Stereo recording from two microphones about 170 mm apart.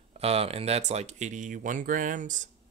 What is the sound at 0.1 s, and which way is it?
Speech, 35° right (ahead or behind).